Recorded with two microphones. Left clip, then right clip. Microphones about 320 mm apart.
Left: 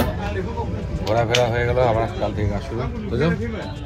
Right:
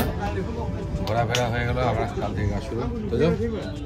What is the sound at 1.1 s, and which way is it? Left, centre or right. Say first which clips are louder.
Speech: left 6 dB; centre.